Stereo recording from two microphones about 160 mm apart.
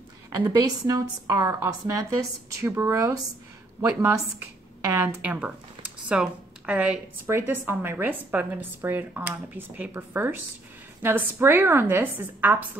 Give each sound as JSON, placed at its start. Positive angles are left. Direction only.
{"t": 0.3, "sound": "a woman's voice", "side_deg": -20}